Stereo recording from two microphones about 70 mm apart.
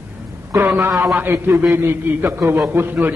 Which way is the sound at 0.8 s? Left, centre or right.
Right.